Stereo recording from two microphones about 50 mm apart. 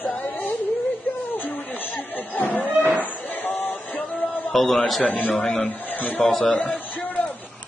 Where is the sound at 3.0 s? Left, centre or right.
Left.